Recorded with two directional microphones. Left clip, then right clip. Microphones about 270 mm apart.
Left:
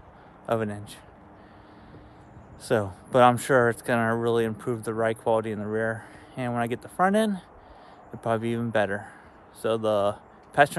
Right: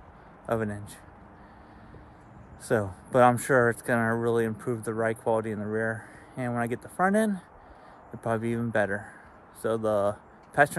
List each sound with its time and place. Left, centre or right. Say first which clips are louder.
0.5 s speech: left 2 dB; centre
2.6 s speech: left 2 dB; centre